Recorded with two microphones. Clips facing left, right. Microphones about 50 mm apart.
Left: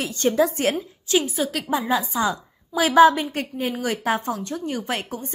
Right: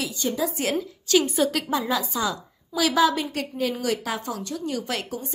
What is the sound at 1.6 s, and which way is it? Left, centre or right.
A woman's voice, left.